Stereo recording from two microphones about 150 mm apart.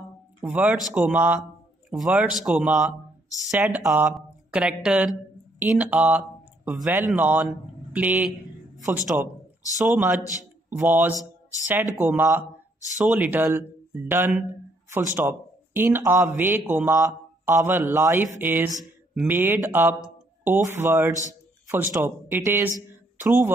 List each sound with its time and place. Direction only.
0.4 s speech: 10° right (ahead or behind)
3.3 s speech: 20° left (ahead or behind)
4.1 s speech: 5° right (ahead or behind)
22.8 s a sound: 15° right (ahead or behind)